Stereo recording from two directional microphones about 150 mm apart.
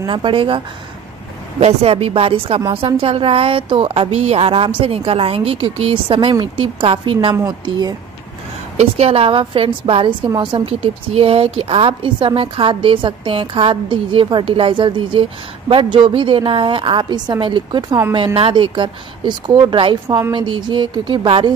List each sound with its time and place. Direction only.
0.0 s a woman's voice: 35° right (ahead or behind)
1.6 s a woman's voice: 45° right (ahead or behind); by 7.9 s 25° right (ahead or behind)
8.7 s a woman's voice: 40° right (ahead or behind)